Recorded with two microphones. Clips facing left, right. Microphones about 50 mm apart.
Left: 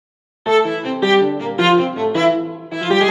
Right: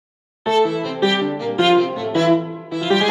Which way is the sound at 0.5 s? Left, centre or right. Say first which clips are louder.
Left 2 dB; left.